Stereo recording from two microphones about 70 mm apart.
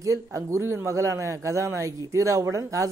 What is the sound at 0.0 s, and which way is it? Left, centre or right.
A man's voice, right.